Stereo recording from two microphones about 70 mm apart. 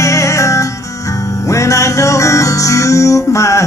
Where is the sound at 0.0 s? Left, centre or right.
Left.